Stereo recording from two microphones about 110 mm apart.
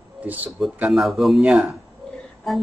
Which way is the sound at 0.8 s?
5° right (ahead or behind).